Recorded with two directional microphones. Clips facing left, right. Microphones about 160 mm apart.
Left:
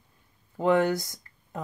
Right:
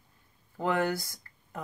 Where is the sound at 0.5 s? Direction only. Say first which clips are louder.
Left 6 dB; 20° left (ahead or behind).